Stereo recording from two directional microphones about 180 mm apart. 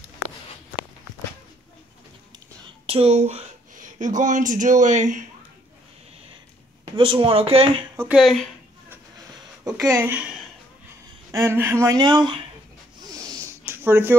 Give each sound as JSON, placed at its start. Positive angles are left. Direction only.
{"t": 2.9, "sound": "speech", "side_deg": -35}
{"t": 7.0, "sound": "speech", "side_deg": -30}
{"t": 8.1, "sound": "speech", "side_deg": 0}
{"t": 9.8, "sound": "speech", "side_deg": -15}
{"t": 13.1, "sound": "a sound", "side_deg": -20}